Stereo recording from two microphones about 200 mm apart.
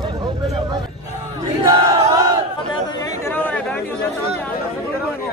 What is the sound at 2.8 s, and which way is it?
Chatter, 20° left (ahead or behind).